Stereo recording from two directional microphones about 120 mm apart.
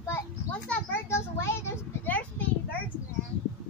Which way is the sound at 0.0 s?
15° left (ahead or behind).